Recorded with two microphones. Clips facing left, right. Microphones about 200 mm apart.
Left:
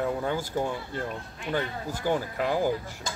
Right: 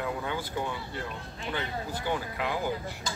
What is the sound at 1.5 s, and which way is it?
Speech, 40° left (ahead or behind).